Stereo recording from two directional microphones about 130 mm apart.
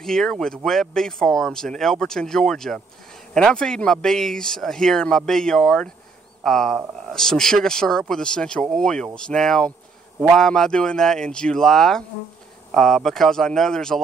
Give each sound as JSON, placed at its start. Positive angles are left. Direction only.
{"t": 0.0, "sound": "speech", "side_deg": 5}